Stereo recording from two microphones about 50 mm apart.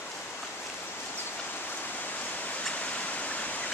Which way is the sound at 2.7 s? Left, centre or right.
Left.